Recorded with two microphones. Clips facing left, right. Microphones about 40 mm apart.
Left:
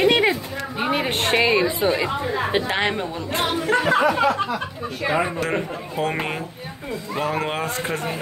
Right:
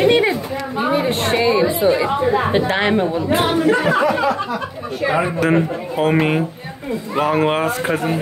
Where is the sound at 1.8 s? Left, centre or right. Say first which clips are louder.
Right 5 dB; left.